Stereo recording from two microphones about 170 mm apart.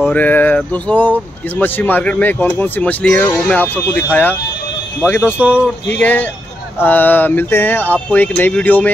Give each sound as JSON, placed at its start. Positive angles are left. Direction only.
{"t": 0.0, "sound": "speech", "side_deg": 10}
{"t": 5.5, "sound": "speech", "side_deg": 10}